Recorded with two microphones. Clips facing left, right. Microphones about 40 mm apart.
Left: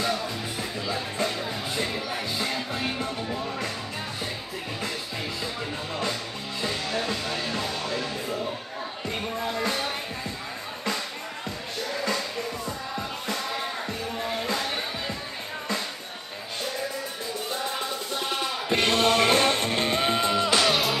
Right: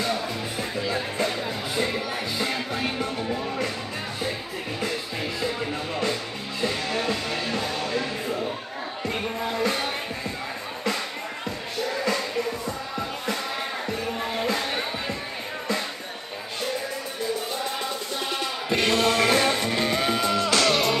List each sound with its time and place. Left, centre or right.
0.8 s music: centre
6.9 s music: centre
12.0 s music: centre
14.1 s music: centre
18.7 s music: left; by 20.9 s centre